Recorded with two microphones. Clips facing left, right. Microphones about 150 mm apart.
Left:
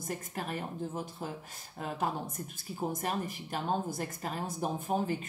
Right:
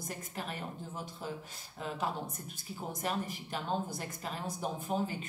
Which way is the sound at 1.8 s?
50° left (ahead or behind).